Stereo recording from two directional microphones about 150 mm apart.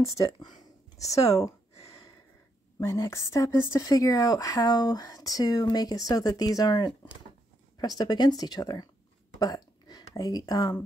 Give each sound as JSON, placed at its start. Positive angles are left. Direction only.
{"t": 0.0, "sound": "a sound", "side_deg": 25}
{"t": 1.1, "sound": "speech", "side_deg": 20}
{"t": 2.8, "sound": "speech", "side_deg": 20}